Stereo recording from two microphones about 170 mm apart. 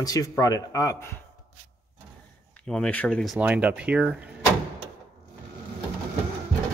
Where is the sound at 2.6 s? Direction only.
5° left (ahead or behind).